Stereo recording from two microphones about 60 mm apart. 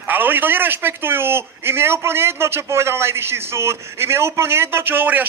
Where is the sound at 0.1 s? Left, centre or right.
Right.